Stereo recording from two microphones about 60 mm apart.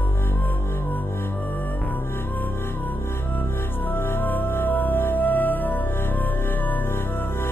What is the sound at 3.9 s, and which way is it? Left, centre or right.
Music, left.